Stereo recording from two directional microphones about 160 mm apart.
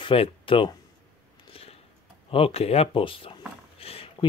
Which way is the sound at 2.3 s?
40° left (ahead or behind).